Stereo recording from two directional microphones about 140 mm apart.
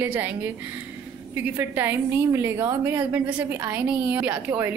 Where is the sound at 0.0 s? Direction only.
15° right (ahead or behind).